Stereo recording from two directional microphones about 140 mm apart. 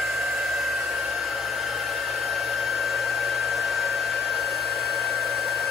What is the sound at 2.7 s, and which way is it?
Hair dryer, centre (ahead or behind).